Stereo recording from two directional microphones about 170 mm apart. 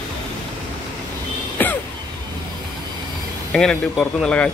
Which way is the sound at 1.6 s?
10° left (ahead or behind).